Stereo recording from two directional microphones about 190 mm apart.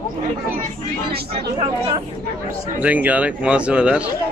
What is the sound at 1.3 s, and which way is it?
Speech, 30° right (ahead or behind).